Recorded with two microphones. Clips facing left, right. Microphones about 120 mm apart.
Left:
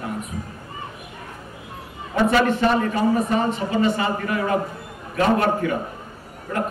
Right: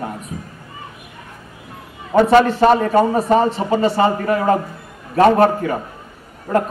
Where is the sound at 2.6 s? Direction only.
45° right (ahead or behind).